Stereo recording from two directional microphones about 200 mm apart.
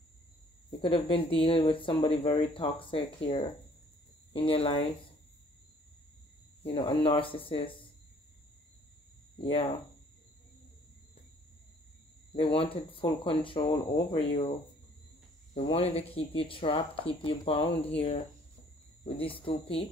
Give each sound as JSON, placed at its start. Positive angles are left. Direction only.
{"t": 0.7, "sound": "speech", "side_deg": 25}
{"t": 4.3, "sound": "speech", "side_deg": 25}
{"t": 6.7, "sound": "speech", "side_deg": 25}
{"t": 9.4, "sound": "speech", "side_deg": 25}
{"t": 12.4, "sound": "speech", "side_deg": 30}
{"t": 15.5, "sound": "speech", "side_deg": 30}
{"t": 19.1, "sound": "speech", "side_deg": 25}